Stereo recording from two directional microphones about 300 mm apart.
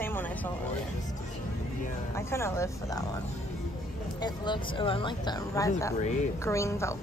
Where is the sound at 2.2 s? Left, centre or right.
Centre.